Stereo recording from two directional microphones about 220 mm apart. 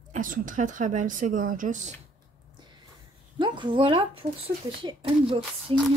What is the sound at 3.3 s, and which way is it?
Speech, 20° right (ahead or behind).